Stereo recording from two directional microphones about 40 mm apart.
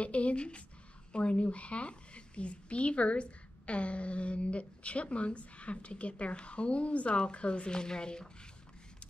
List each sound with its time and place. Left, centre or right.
0.0 s a woman's voice: left